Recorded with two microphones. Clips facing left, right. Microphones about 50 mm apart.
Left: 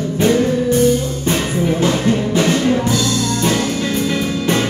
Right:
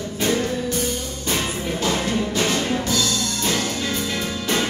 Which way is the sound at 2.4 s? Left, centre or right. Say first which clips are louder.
Left 7 dB; left.